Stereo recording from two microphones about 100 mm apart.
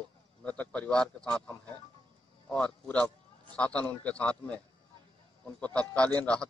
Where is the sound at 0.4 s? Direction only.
15° left (ahead or behind).